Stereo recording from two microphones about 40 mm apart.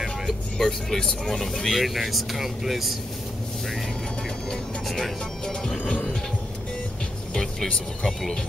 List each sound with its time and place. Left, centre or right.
0.6 s speech: centre
4.5 s music: centre
7.3 s speech: centre